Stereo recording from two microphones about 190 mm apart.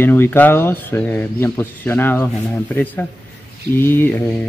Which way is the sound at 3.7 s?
10° left (ahead or behind).